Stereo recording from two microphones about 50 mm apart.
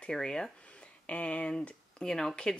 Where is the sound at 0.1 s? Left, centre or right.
Centre.